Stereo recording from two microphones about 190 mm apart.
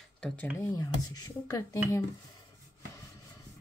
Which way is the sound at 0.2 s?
10° left (ahead or behind).